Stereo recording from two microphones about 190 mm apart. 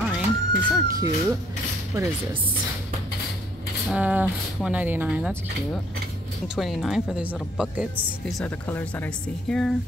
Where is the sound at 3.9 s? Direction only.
10° right (ahead or behind).